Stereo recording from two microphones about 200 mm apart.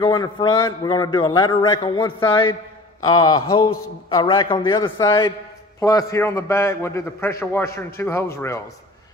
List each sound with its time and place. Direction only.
0.0 s a man's voice: 25° left (ahead or behind)